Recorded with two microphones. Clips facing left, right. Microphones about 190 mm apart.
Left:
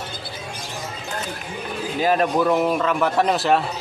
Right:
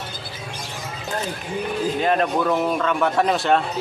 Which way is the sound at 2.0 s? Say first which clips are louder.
Left 3 dB; 5° left (ahead or behind).